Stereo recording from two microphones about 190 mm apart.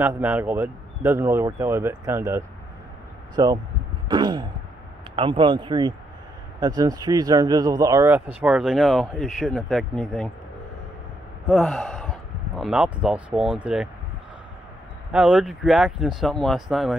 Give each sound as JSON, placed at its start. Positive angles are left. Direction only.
{"t": 0.0, "sound": "speech", "side_deg": -10}
{"t": 4.1, "sound": "a sound", "side_deg": -20}
{"t": 5.1, "sound": "speech", "side_deg": -25}
{"t": 11.4, "sound": "speech", "side_deg": 0}
{"t": 15.1, "sound": "speech", "side_deg": -5}